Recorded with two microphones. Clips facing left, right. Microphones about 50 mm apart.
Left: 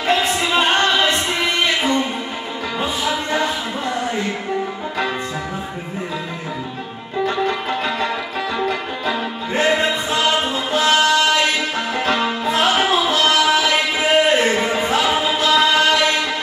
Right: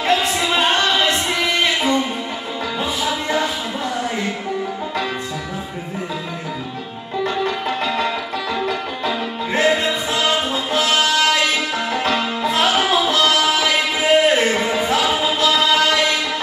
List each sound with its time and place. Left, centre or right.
0.0 s music: left
7.2 s music: left
9.6 s music: left